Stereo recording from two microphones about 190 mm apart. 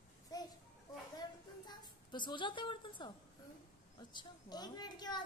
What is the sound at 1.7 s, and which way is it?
A woman's voice, 25° left (ahead or behind).